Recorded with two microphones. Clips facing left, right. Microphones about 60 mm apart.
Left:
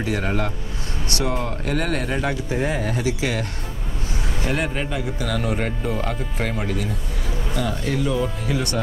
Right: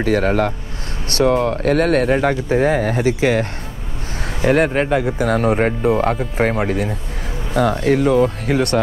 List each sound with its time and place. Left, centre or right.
0.0 s speech: right
3.0 s speech: right
4.5 s speech: right
7.5 s speech: right